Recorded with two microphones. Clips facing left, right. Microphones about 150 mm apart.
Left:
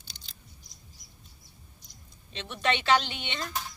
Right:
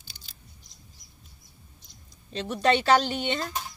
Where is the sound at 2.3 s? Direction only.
40° right (ahead or behind).